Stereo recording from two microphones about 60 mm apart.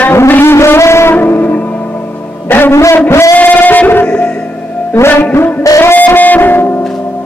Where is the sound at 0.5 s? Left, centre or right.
Left.